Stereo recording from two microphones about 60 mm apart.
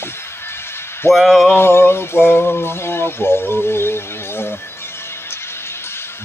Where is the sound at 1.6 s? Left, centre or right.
Left.